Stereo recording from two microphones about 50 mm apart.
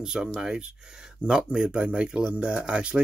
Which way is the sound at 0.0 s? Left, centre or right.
Centre.